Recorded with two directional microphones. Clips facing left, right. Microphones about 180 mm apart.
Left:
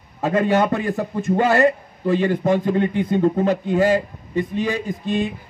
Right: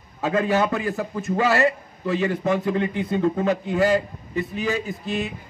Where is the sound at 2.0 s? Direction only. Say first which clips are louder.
Left 4 dB; 30° left (ahead or behind).